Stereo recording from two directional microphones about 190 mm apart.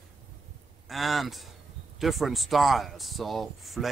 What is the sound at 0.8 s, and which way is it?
Speech, centre (ahead or behind).